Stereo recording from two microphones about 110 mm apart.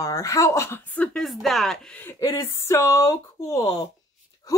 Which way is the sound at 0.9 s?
10° left (ahead or behind).